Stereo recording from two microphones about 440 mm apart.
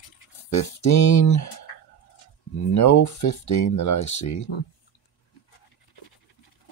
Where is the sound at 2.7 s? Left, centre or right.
Left.